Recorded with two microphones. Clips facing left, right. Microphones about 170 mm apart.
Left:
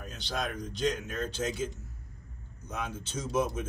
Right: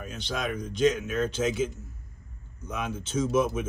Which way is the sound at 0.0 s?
85° right.